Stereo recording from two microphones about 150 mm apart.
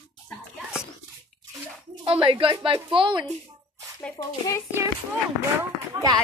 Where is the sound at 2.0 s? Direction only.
35° right (ahead or behind).